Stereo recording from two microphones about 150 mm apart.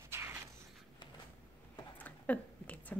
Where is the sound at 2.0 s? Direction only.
10° left (ahead or behind).